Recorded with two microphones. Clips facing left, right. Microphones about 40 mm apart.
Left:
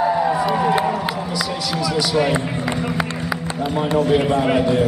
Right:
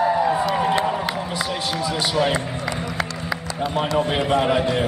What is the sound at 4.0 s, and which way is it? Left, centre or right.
Speech, right.